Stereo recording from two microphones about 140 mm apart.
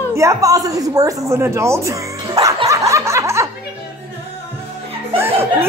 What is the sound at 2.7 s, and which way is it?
Snicker, 20° right (ahead or behind).